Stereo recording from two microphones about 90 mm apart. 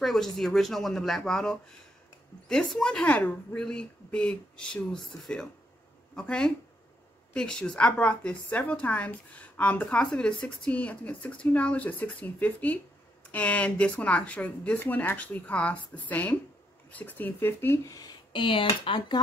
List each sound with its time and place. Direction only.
0.0 s a woman's voice: 5° left (ahead or behind); by 17.9 s 25° left (ahead or behind)
18.3 s speech: 65° left (ahead or behind)